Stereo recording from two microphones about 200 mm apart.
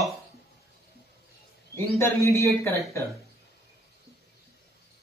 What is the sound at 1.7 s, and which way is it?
Speech, 15° left (ahead or behind).